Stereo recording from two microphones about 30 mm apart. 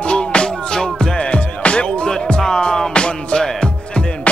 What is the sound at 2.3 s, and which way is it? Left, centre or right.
Music, left.